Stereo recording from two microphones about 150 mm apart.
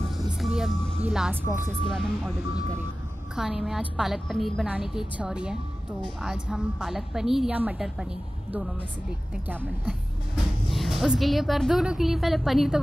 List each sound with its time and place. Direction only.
0.2 s music: centre (ahead or behind)
1.9 s speech: 5° left (ahead or behind)
3.3 s speech: 5° right (ahead or behind)